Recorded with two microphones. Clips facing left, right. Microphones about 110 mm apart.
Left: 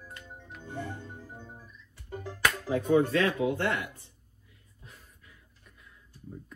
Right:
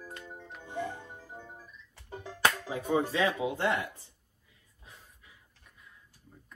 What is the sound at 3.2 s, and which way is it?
Speech, 20° right (ahead or behind).